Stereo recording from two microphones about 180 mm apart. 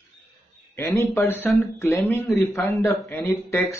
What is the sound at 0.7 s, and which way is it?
A man's voice, 15° left (ahead or behind).